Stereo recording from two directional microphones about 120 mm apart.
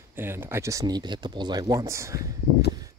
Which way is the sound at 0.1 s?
20° right (ahead or behind).